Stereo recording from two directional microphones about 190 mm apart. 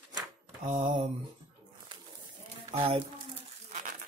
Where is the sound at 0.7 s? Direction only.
25° right (ahead or behind).